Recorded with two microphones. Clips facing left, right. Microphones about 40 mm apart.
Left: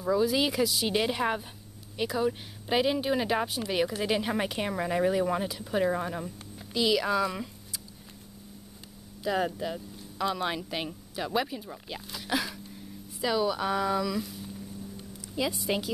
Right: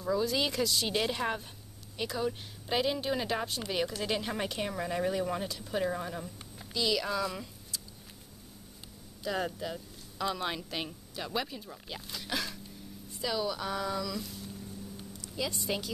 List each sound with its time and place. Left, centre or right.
0.0 s speech: centre
9.2 s speech: centre